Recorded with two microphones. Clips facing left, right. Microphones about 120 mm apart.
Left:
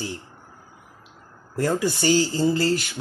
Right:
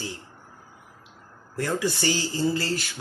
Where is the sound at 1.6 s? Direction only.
25° left (ahead or behind).